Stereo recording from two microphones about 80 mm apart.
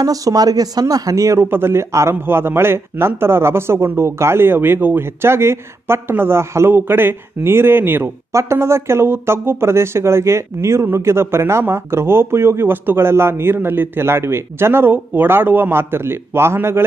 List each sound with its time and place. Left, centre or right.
0.0 s speech: right
1.4 s a man's voice: right